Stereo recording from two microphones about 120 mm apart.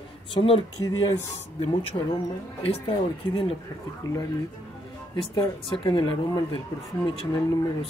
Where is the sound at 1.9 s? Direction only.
45° left (ahead or behind).